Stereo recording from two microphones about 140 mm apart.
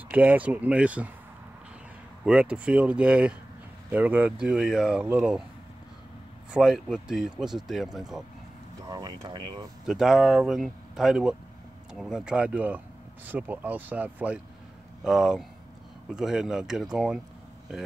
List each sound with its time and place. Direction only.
0.1 s speech: 10° right (ahead or behind)
2.2 s speech: 10° right (ahead or behind)
6.5 s speech: 5° right (ahead or behind)
8.8 s speech: 30° right (ahead or behind)
9.8 s speech: 5° right (ahead or behind)